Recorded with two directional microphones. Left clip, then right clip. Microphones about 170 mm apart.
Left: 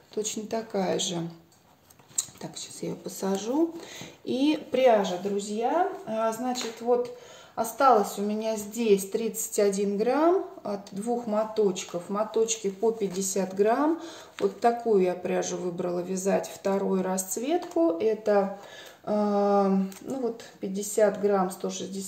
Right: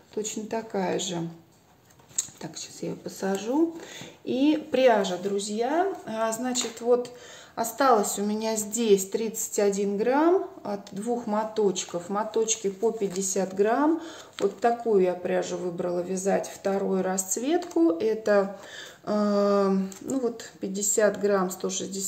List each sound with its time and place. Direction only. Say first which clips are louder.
0.1 s a woman's voice: even; 10° right (ahead or behind)
6.0 s speech: even; 40° right (ahead or behind)
9.4 s a woman's voice: even; 15° right (ahead or behind); by 22.0 s 35° right (ahead or behind)